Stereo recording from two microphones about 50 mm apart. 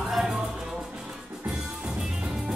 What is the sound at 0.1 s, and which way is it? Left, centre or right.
Music, centre.